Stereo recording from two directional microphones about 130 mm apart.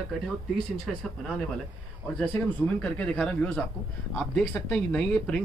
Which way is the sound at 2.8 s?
10° left (ahead or behind).